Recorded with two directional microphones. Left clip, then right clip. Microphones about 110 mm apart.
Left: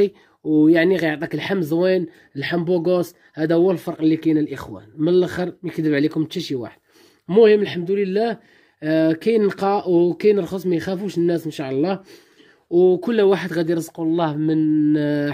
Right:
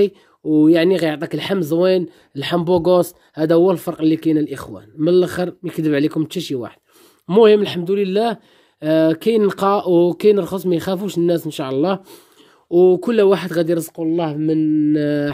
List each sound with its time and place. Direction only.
0.0 s speech: 30° right (ahead or behind)
7.2 s speech: 50° right (ahead or behind); by 13.9 s 25° right (ahead or behind)
13.9 s speech: 5° right (ahead or behind)
14.9 s speech: 20° right (ahead or behind)